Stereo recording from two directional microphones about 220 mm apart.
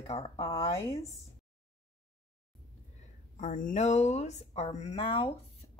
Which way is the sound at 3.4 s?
35° left (ahead or behind).